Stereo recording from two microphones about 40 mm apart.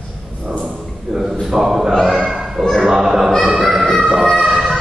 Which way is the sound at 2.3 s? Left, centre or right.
Centre.